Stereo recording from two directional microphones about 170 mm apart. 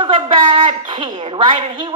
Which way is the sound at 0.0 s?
30° right (ahead or behind).